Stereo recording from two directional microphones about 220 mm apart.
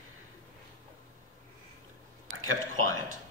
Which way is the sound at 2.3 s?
70° right (ahead or behind).